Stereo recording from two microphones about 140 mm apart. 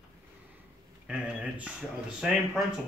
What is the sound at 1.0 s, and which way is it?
A man's voice, 10° right (ahead or behind).